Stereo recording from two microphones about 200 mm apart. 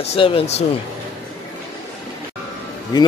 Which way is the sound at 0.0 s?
30° left (ahead or behind).